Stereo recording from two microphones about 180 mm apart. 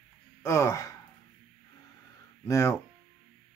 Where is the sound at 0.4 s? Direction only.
15° left (ahead or behind).